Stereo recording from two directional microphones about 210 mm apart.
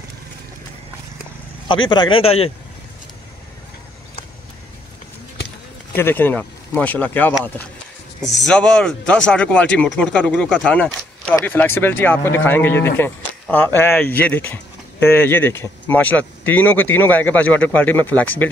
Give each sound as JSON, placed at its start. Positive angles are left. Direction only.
{"t": 1.7, "sound": "speech", "side_deg": 20}
{"t": 5.9, "sound": "speech", "side_deg": 10}